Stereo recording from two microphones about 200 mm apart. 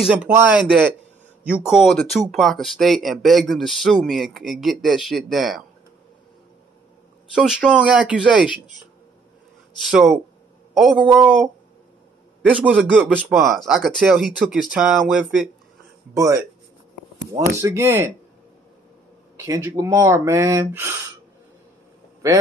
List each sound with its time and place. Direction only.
0.0 s speech: 5° right (ahead or behind)
7.3 s speech: 5° right (ahead or behind)
9.8 s speech: centre (ahead or behind)
12.6 s speech: centre (ahead or behind)
16.2 s speech: 15° right (ahead or behind)
19.3 s speech: 15° right (ahead or behind)